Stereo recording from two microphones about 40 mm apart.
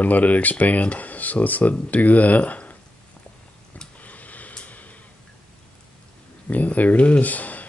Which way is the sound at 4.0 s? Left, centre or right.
Left.